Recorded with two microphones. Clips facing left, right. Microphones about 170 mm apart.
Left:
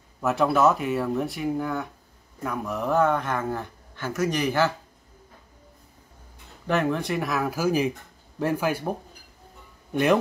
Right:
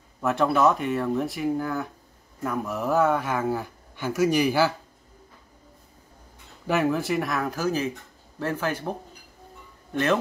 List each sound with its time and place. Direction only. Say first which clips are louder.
0.2 s speech: even; centre (ahead or behind)
6.7 s speech: right 1 dB; 5° right (ahead or behind); by 8.9 s 10° left (ahead or behind)